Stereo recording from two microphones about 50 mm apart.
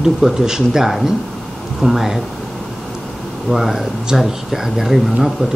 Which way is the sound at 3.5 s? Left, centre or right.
Centre.